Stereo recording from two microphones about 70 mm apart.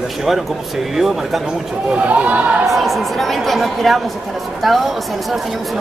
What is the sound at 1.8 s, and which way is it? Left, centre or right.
Speech, centre.